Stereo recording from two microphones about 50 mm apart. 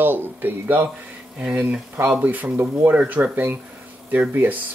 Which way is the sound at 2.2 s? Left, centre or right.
Right.